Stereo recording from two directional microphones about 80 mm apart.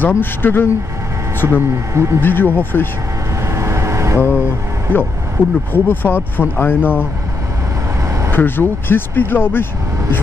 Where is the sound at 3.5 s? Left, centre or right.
Right.